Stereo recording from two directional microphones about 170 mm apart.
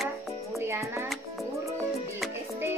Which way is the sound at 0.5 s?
15° right (ahead or behind).